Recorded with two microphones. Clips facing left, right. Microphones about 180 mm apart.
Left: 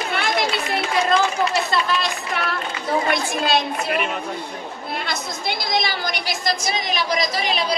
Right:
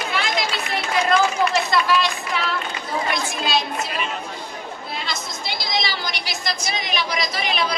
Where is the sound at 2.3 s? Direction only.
55° left (ahead or behind).